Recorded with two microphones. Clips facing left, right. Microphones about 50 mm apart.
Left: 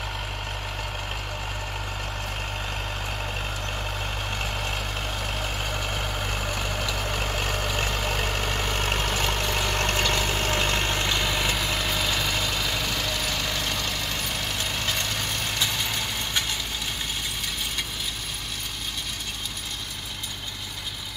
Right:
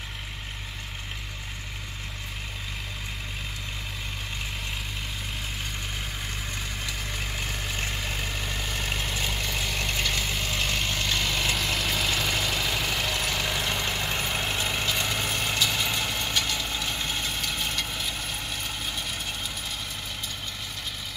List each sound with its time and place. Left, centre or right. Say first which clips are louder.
6.5 s vehicle: left 6 dB; left
11.1 s vehicle: left 2 dB; centre
11.3 s vehicle: left 1 dB; centre; by 16.1 s right